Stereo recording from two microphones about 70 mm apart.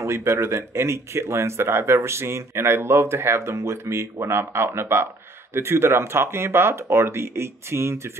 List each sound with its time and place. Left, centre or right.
0.0 s speech: right